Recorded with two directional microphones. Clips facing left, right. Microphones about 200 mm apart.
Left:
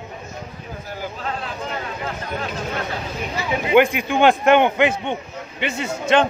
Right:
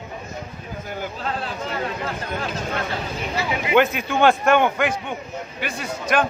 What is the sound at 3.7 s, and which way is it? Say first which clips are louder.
A man's voice: left 3 dB; 15° left (ahead or behind).